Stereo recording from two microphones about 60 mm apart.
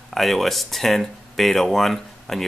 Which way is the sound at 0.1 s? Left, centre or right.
Centre.